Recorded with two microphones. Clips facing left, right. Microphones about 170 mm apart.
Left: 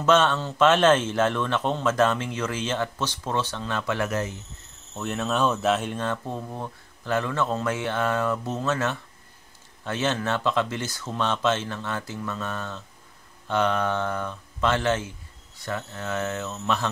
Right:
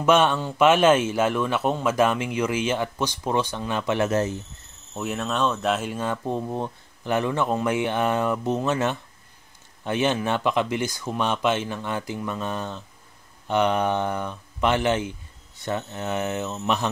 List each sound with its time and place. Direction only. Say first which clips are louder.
0.0 s speech: right 1 dB; 10° right (ahead or behind)
4.9 s speech: even; 5° right (ahead or behind)